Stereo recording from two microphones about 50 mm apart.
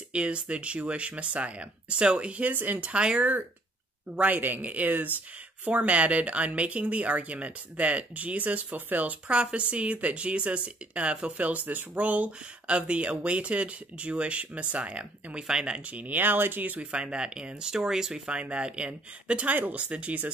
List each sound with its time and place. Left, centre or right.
0.1 s speech: right
4.2 s speech: right
9.3 s speech: right
16.9 s speech: centre